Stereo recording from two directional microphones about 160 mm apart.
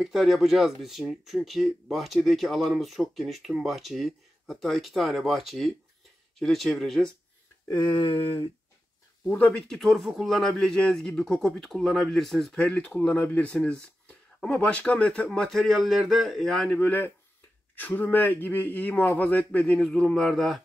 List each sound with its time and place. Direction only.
0.0 s speech: centre (ahead or behind)
7.7 s a sound: 30° left (ahead or behind)
9.3 s speech: 5° left (ahead or behind)